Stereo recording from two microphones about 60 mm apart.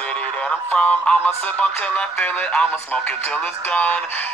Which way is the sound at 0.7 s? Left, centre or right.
Left.